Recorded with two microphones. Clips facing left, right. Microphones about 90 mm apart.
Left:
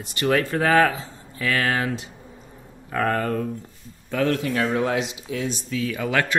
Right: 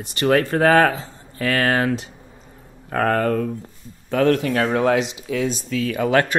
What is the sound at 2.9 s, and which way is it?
Speech, 55° right (ahead or behind).